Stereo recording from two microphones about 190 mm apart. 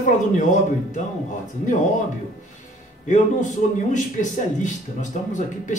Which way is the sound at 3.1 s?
40° left (ahead or behind).